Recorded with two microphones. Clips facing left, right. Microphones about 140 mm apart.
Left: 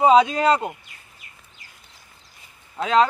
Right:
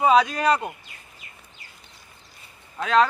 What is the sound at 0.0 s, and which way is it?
Speech, 25° left (ahead or behind).